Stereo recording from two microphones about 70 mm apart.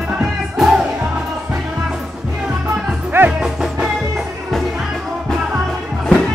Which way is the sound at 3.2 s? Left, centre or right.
Right.